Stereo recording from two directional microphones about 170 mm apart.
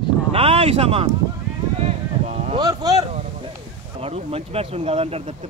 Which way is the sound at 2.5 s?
20° right (ahead or behind).